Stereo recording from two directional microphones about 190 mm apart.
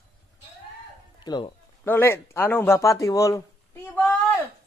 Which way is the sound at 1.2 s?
25° left (ahead or behind).